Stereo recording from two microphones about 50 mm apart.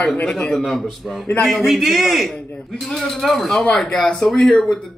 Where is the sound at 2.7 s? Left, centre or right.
Centre.